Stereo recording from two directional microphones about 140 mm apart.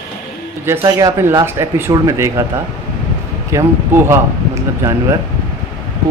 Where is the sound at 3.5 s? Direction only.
20° right (ahead or behind).